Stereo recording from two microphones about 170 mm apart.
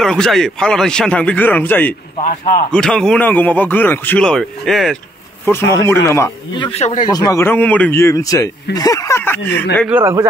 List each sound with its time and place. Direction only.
0.0 s a man's voice: 5° left (ahead or behind)
5.4 s a man's voice: 15° left (ahead or behind)
6.5 s a man's voice: 30° left (ahead or behind)
7.1 s a man's voice: 20° left (ahead or behind)
9.8 s speech: 15° right (ahead or behind)